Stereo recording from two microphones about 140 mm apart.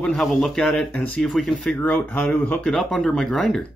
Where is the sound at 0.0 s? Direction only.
5° left (ahead or behind).